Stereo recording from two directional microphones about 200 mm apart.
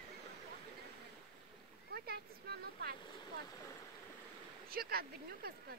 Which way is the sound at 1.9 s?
50° right (ahead or behind).